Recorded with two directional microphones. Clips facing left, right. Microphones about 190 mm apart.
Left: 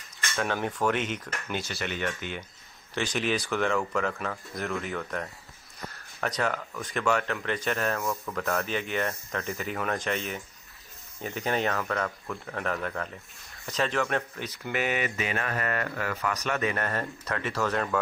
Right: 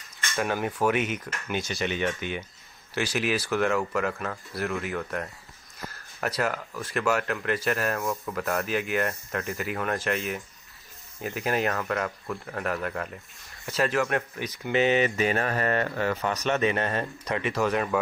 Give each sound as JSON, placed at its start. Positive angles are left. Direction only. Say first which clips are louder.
{"t": 0.3, "sound": "cutlery", "louder": "right 2 dB", "side_deg": -15}
{"t": 0.7, "sound": "speech", "louder": "right 2 dB", "side_deg": -10}
{"t": 2.9, "sound": "speech", "louder": "right 1 dB", "side_deg": -5}
{"t": 14.6, "sound": "speech", "louder": "right 7 dB", "side_deg": -20}